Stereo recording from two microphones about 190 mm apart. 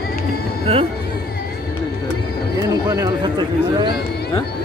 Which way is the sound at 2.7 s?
20° right (ahead or behind).